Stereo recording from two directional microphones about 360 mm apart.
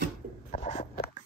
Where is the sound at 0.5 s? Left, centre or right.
Centre.